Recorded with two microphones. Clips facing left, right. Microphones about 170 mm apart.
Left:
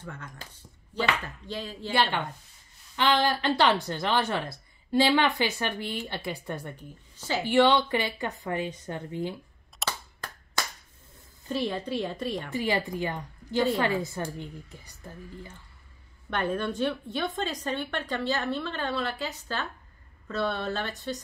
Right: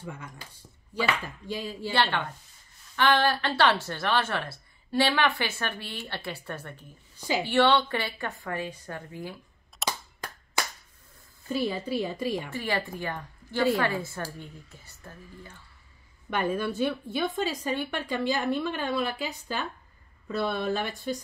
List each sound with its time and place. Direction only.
0.0 s speech: 10° right (ahead or behind)
1.9 s speech: 10° left (ahead or behind)
7.2 s a woman's voice: 15° right (ahead or behind)
7.4 s a woman's voice: 15° left (ahead or behind)
9.8 s cap gun: 10° right (ahead or behind)
11.4 s speech: 5° right (ahead or behind)
12.4 s speech: 15° left (ahead or behind)
16.3 s speech: 10° right (ahead or behind)